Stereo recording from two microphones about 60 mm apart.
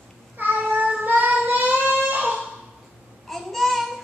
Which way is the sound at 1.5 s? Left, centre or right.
Right.